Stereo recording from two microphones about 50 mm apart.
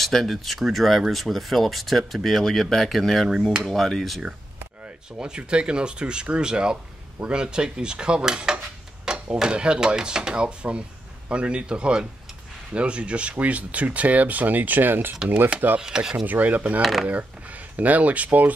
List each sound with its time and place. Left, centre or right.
0.0 s speech: centre
5.2 s a man's voice: centre
7.4 s dishes: centre
9.0 s speech: centre; by 15.5 s right
15.8 s dishes: centre
16.3 s speech: right